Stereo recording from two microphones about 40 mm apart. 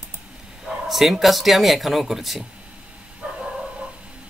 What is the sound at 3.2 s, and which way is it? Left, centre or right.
Bow-wow, right.